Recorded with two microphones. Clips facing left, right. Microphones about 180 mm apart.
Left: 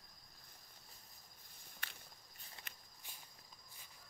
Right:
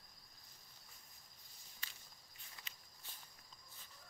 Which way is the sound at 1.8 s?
60° left (ahead or behind).